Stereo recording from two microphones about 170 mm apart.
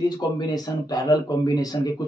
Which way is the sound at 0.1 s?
25° left (ahead or behind).